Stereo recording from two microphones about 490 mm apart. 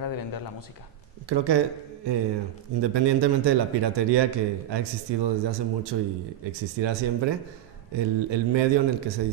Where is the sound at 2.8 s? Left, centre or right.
Right.